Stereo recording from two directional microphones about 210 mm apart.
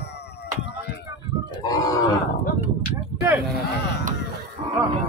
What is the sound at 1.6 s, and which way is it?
Livestock, 20° left (ahead or behind).